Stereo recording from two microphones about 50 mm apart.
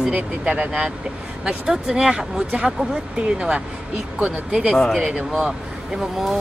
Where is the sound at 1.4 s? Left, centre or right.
Centre.